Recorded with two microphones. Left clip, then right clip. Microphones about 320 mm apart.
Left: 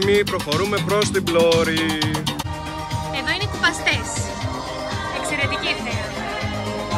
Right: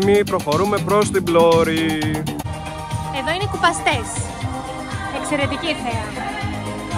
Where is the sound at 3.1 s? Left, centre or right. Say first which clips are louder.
Right 2 dB; centre.